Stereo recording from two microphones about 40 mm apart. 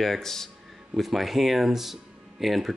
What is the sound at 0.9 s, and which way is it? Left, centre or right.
Speech, centre.